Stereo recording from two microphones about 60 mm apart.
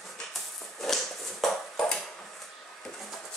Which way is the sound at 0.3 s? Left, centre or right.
Centre.